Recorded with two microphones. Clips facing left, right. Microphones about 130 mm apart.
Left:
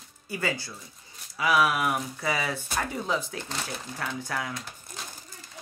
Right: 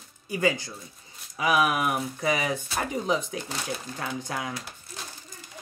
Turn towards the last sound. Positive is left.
turn(degrees=-20)  # may be behind; listen again after turning